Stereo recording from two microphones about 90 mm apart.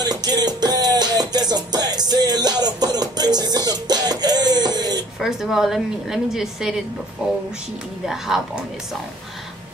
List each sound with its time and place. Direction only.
0.0 s music: 50° right (ahead or behind)
5.2 s a woman's voice: 5° right (ahead or behind)
8.0 s a woman's voice: 5° right (ahead or behind)